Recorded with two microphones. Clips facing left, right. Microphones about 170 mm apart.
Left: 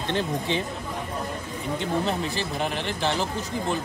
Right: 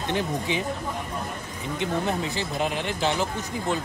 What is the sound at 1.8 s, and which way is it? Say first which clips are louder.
Speech: right 1 dB; 20° right (ahead or behind).